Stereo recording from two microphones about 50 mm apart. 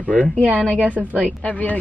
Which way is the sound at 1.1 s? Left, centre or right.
Left.